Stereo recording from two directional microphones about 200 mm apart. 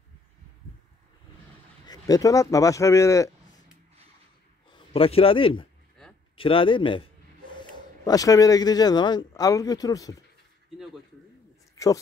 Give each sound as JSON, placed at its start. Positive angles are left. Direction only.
{"t": 1.9, "sound": "speech", "side_deg": 20}
{"t": 4.6, "sound": "a man's voice", "side_deg": 25}
{"t": 11.7, "sound": "a sound", "side_deg": 15}